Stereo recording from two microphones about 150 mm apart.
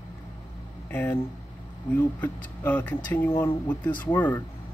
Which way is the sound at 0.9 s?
10° left (ahead or behind).